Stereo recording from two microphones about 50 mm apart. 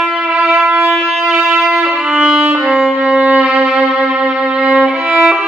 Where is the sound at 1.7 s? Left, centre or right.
Centre.